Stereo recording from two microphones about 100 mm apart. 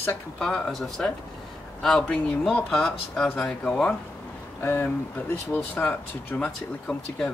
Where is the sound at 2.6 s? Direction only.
5° left (ahead or behind).